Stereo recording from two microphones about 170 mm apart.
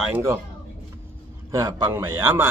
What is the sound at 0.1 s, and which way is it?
Speech, 15° right (ahead or behind).